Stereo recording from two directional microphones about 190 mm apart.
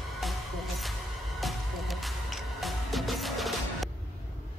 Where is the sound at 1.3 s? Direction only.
Centre (ahead or behind).